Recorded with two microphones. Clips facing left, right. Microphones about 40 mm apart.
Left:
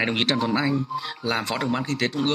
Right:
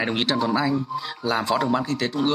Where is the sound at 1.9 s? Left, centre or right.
Left.